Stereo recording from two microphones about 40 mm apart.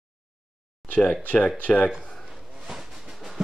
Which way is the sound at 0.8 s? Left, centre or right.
Left.